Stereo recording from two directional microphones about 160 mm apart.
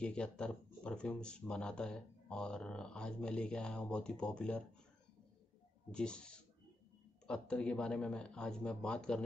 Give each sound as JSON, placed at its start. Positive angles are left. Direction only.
{"t": 0.0, "sound": "speech", "side_deg": 5}
{"t": 5.9, "sound": "speech", "side_deg": 5}